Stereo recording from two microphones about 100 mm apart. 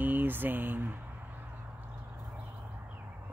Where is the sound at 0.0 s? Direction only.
20° right (ahead or behind).